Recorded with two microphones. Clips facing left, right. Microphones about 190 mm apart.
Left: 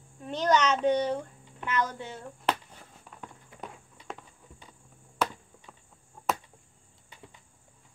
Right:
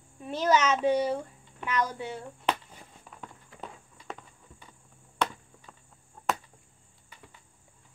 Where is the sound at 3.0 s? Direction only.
Centre (ahead or behind).